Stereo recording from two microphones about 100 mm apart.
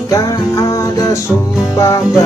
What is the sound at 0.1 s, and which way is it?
Music, 30° left (ahead or behind).